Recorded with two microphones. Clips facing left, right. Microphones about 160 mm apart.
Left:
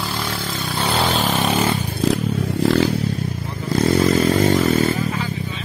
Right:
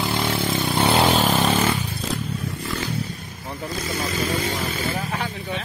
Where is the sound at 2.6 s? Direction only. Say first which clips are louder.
Left 16 dB; 75° left (ahead or behind).